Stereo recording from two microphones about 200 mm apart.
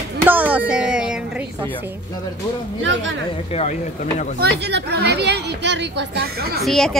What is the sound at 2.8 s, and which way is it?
Speech, 65° right (ahead or behind).